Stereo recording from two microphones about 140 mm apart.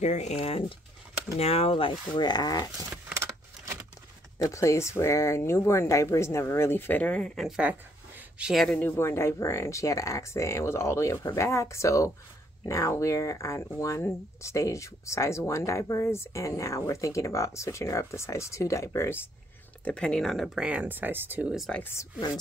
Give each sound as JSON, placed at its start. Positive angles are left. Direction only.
{"t": 0.0, "sound": "speech", "side_deg": 55}
{"t": 2.9, "sound": "a sound", "side_deg": -15}
{"t": 4.4, "sound": "speech", "side_deg": 20}
{"t": 7.4, "sound": "speech", "side_deg": -5}
{"t": 8.8, "sound": "speech", "side_deg": 15}
{"t": 19.8, "sound": "speech", "side_deg": 10}
{"t": 21.6, "sound": "speech", "side_deg": 10}